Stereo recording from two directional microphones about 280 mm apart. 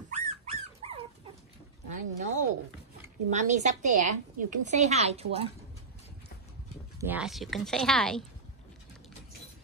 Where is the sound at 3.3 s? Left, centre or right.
Right.